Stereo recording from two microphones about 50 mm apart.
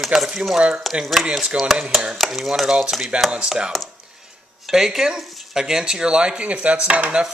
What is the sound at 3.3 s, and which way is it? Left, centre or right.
Speech, centre.